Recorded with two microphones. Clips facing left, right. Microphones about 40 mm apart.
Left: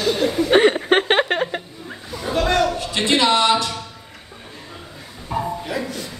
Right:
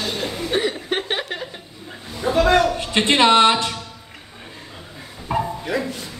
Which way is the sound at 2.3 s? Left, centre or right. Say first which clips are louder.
Right 3 dB; centre.